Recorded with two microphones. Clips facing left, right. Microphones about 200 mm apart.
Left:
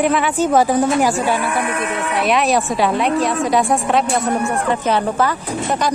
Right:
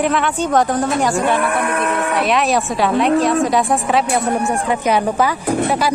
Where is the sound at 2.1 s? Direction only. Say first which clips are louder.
Left 2 dB; centre (ahead or behind).